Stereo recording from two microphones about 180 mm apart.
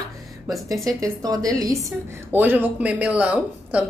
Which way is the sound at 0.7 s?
20° right (ahead or behind).